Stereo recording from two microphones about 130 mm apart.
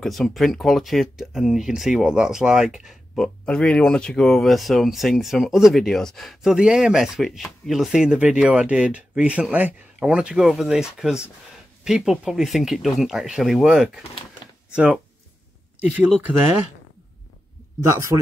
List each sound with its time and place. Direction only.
0.0 s speech: centre (ahead or behind)
17.8 s speech: 25° right (ahead or behind)